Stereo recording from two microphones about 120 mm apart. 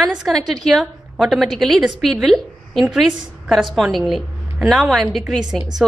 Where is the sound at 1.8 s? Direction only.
10° right (ahead or behind).